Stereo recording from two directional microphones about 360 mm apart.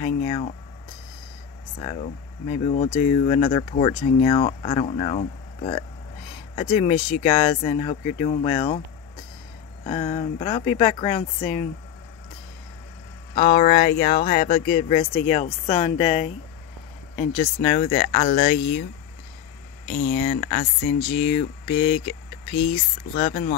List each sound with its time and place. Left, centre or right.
0.0 s speech: centre
1.8 s speech: centre
9.8 s speech: centre
13.3 s speech: left
17.4 s speech: centre
19.9 s speech: centre